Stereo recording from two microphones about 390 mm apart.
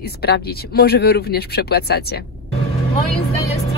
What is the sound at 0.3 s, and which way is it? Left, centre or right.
Speech, left.